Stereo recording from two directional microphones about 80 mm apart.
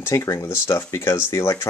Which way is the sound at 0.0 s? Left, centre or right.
Left.